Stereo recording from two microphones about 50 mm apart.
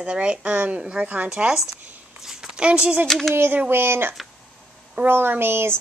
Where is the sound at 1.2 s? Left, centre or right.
Centre.